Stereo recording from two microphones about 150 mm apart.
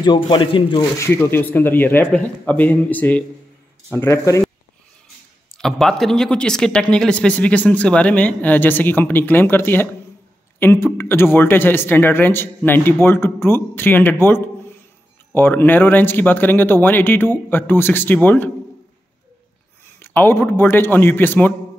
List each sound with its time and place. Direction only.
0.0 s speech: 30° left (ahead or behind)
0.9 s speech: 20° left (ahead or behind)
5.6 s speech: 5° left (ahead or behind)
20.0 s speech: 15° left (ahead or behind)